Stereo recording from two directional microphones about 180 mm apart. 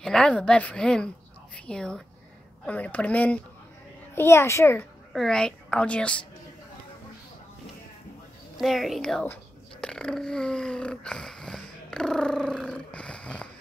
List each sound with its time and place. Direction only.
0.0 s a woman's voice: 5° left (ahead or behind)
5.1 s a woman's voice: 5° left (ahead or behind)
8.5 s a sound: centre (ahead or behind)